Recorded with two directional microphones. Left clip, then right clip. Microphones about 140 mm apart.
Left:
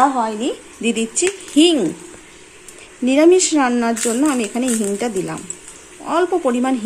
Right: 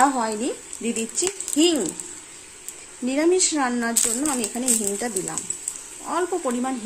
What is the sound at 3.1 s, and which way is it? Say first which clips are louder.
Speech: left 8 dB; 10° left (ahead or behind).